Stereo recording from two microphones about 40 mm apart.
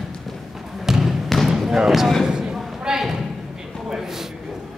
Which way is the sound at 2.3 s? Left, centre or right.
Centre.